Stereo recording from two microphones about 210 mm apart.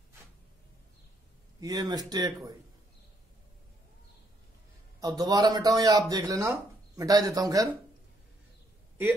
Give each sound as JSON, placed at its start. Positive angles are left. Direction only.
{"t": 1.6, "sound": "speech", "side_deg": -20}
{"t": 5.0, "sound": "speech", "side_deg": -20}